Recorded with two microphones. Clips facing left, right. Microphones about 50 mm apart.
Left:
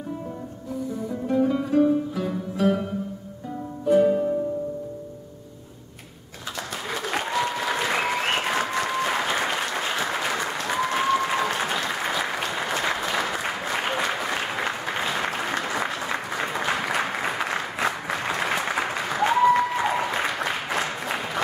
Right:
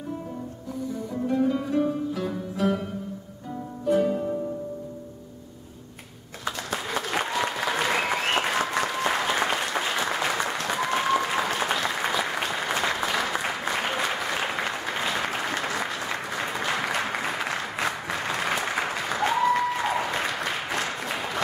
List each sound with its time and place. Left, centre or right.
1.2 s music: centre
6.9 s applause: centre